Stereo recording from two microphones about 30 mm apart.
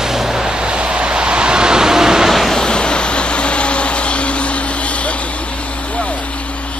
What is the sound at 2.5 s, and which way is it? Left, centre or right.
Vehicle, left.